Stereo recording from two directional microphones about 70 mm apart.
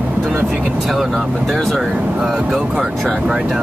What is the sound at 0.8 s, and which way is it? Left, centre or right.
Speech, centre.